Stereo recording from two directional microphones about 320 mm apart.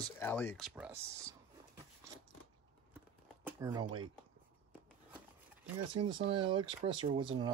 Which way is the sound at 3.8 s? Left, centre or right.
Centre.